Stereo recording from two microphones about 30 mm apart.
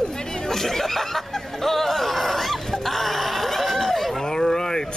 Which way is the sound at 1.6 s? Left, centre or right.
Centre.